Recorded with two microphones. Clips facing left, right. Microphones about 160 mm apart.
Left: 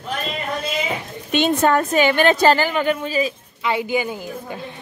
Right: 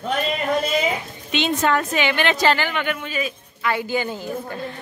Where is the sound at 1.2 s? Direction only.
50° left (ahead or behind); by 3.3 s 35° left (ahead or behind).